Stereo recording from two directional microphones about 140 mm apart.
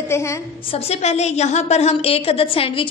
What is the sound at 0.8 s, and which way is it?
A woman's voice, 50° left (ahead or behind).